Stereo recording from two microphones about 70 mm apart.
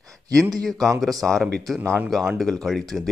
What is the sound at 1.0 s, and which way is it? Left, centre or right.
Speech, centre.